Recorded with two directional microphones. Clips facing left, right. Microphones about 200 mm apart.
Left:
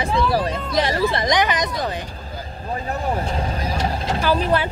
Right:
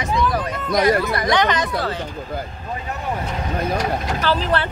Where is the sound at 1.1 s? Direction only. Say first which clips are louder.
Right 1 dB; 20° left (ahead or behind).